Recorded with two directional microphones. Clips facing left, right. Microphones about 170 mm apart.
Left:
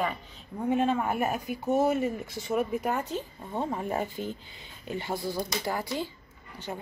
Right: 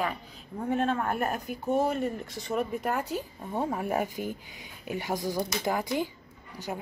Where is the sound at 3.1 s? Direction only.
10° right (ahead or behind).